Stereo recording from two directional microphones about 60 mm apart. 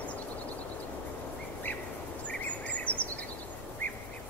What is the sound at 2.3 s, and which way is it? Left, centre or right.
Cricket, left.